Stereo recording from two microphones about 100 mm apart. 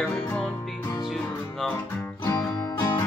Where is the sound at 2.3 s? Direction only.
40° left (ahead or behind).